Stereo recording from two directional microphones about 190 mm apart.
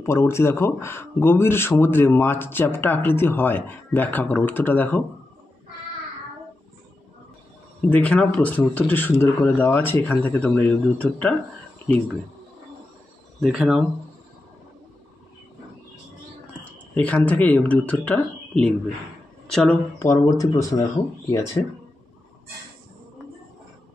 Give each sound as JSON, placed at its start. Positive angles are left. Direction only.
{"t": 0.0, "sound": "speech", "side_deg": 15}
{"t": 7.9, "sound": "speech", "side_deg": 5}
{"t": 13.4, "sound": "speech", "side_deg": 0}
{"t": 16.7, "sound": "speech", "side_deg": 5}
{"t": 20.0, "sound": "speech", "side_deg": 15}